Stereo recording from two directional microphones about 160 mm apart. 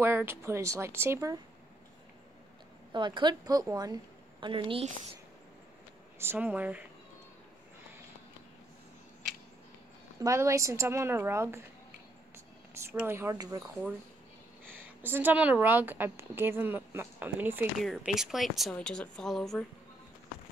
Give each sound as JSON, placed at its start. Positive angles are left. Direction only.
{"t": 0.0, "sound": "speech", "side_deg": -15}
{"t": 2.9, "sound": "a woman's voice", "side_deg": -30}
{"t": 6.1, "sound": "speech", "side_deg": -15}
{"t": 10.2, "sound": "speech", "side_deg": -20}
{"t": 12.8, "sound": "speech", "side_deg": -15}
{"t": 14.6, "sound": "speech", "side_deg": -10}
{"t": 17.8, "sound": "a woman's voice", "side_deg": 0}